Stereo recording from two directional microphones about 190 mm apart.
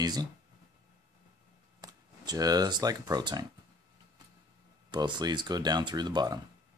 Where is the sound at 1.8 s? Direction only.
20° right (ahead or behind).